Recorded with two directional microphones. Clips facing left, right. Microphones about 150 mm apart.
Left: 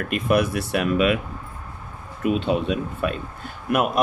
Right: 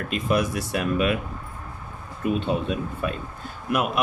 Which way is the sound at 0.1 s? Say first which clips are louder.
Left 3 dB; 60° left (ahead or behind).